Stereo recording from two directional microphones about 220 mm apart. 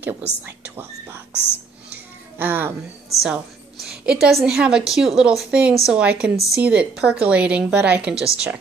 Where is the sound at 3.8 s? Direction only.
5° right (ahead or behind).